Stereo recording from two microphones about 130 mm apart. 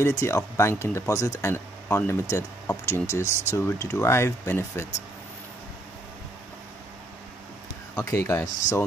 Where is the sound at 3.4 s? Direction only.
20° left (ahead or behind).